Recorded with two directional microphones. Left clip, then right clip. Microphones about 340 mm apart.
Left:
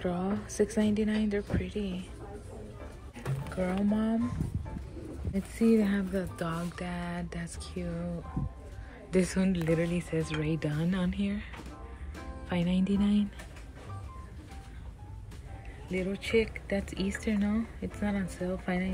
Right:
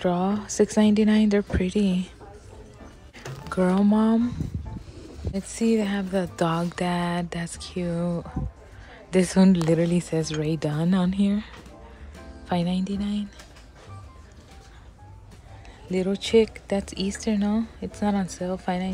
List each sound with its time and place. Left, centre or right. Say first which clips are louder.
0.0 s speech: right 9 dB; centre
3.6 s speech: right 9 dB; centre
5.3 s speech: right 3 dB; centre
9.1 s speech: right 8 dB; centre
9.6 s speech: right 7 dB; right
10.1 s speech: right 6 dB; centre
12.4 s speech: right 5 dB; centre
16.1 s speech: right 9 dB; centre